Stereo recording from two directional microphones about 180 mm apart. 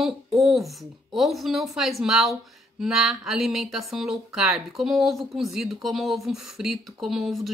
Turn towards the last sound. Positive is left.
turn(degrees=0)  # may be behind; listen again after turning